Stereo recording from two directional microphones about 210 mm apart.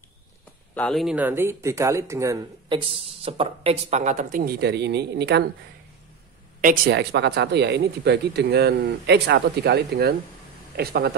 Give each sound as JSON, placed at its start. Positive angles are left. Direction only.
{"t": 0.7, "sound": "speech", "side_deg": 0}
{"t": 2.9, "sound": "speech", "side_deg": -25}
{"t": 6.6, "sound": "speech", "side_deg": -40}
{"t": 7.0, "sound": "speech", "side_deg": -55}